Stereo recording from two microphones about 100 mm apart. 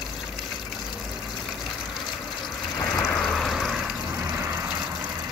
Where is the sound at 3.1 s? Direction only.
5° left (ahead or behind).